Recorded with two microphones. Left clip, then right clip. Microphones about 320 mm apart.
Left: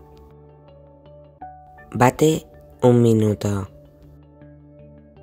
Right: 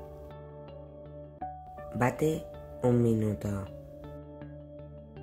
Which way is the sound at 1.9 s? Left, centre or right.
Left.